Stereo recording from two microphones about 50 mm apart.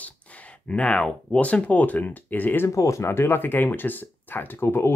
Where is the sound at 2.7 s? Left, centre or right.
Left.